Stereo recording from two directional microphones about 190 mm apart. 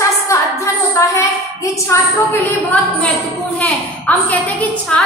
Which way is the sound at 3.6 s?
10° left (ahead or behind).